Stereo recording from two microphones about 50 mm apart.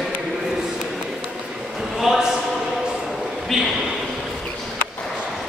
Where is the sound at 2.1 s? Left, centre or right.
Centre.